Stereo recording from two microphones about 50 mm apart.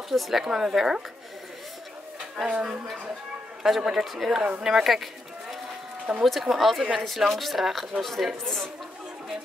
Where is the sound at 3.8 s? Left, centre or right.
Centre.